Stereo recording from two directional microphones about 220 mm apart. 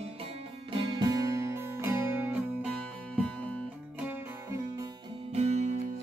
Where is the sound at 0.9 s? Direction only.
20° right (ahead or behind).